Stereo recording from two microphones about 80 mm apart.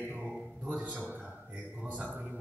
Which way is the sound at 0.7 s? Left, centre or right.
Centre.